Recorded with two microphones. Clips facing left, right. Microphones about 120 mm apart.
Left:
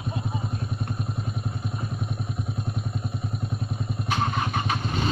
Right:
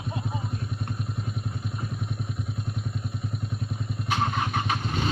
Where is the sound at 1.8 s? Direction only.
35° left (ahead or behind).